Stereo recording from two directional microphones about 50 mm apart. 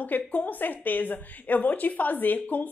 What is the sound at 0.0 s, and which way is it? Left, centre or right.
A woman's voice, left.